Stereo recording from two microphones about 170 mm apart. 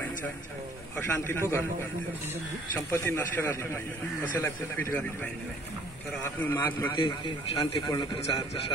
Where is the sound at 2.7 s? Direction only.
15° left (ahead or behind).